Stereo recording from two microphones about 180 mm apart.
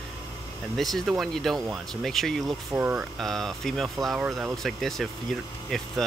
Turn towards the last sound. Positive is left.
turn(degrees=0)  # may be behind; listen again after turning